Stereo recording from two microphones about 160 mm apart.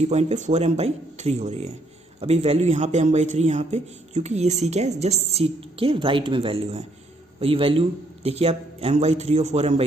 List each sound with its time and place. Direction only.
0.0 s a man's voice: 45° right (ahead or behind)